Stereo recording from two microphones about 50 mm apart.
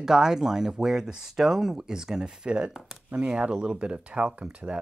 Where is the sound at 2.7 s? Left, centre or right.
Centre.